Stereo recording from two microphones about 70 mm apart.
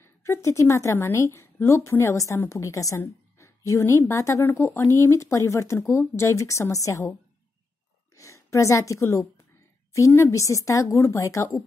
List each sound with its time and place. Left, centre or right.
0.0 s speech: left
8.2 s a woman's voice: left